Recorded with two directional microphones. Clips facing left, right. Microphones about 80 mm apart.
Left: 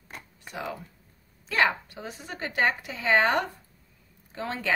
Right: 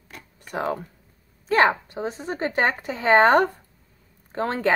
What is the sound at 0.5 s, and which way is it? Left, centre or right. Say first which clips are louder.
Speech: right 9 dB; right.